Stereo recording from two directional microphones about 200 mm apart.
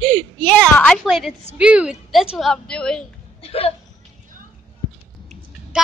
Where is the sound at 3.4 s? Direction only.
30° left (ahead or behind).